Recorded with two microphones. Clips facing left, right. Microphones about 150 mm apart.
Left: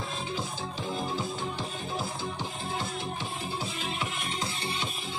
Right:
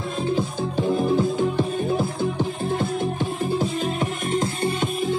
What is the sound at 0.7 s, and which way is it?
Music, 55° right (ahead or behind).